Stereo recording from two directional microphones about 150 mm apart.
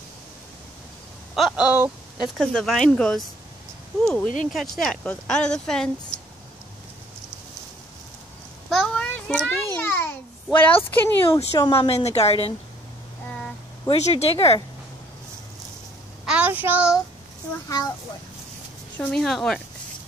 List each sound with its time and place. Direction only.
1.3 s speech: 5° right (ahead or behind)
8.6 s a sound: 5° left (ahead or behind)
11.3 s speech: 20° left (ahead or behind)
11.7 s a woman's voice: 40° left (ahead or behind)
13.9 s a woman's voice: 45° left (ahead or behind)
16.3 s child singing: 10° right (ahead or behind)
17.6 s speech: 25° left (ahead or behind)
18.9 s speech: centre (ahead or behind)